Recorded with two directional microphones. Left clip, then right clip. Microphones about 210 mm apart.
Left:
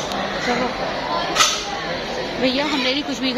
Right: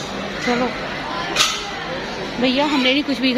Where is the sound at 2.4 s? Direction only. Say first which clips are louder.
Right 3 dB; 30° right (ahead or behind).